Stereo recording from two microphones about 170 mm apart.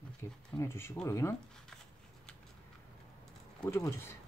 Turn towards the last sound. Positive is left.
turn(degrees=15)  # may be behind; listen again after turning